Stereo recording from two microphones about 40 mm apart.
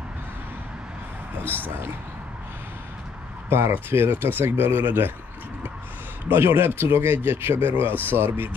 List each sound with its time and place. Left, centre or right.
1.4 s speech: left
3.4 s speech: right
3.9 s speech: right
4.8 s speech: right
6.3 s speech: right
7.2 s speech: right